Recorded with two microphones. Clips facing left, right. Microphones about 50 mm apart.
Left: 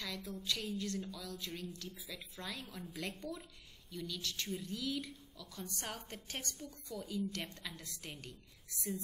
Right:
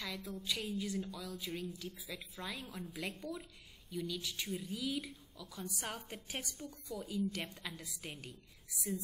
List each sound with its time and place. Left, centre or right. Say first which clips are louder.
0.2 s a woman's voice: even; centre